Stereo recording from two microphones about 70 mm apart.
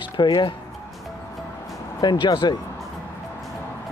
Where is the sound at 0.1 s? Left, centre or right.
Left.